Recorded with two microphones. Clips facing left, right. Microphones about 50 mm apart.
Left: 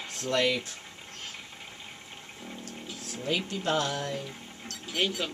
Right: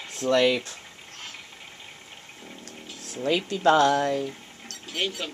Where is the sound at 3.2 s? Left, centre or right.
Right.